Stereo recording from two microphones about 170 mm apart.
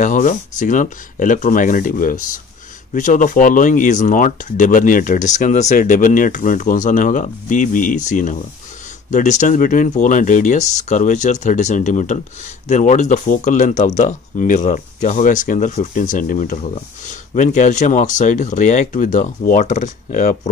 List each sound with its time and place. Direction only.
0.0 s speech: 50° left (ahead or behind)